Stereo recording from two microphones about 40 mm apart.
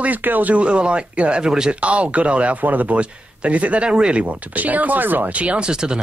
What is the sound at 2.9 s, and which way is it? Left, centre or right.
Speech, right.